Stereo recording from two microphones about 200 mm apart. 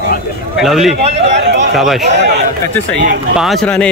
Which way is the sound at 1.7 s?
Centre (ahead or behind).